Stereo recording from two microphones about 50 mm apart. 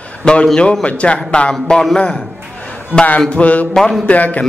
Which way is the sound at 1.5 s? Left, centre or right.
Centre.